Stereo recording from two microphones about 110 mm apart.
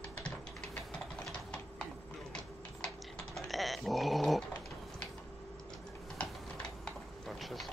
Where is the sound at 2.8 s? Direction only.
Centre (ahead or behind).